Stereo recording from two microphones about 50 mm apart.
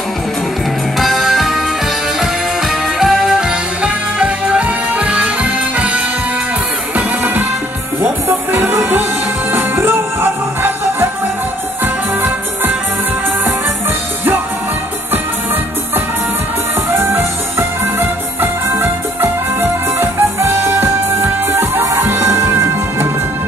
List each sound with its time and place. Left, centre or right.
0.9 s music: centre
3.0 s music: centre; by 6.0 s right
7.0 s music: right
8.0 s music: right
11.8 s music: right
16.9 s music: right